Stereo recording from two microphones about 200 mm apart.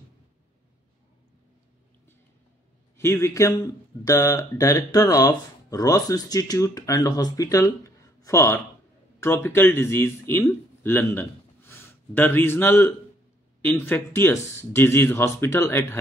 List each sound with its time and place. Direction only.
3.0 s speech: 15° left (ahead or behind)